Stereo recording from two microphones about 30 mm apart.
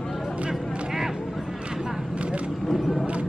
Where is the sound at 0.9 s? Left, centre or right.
Centre.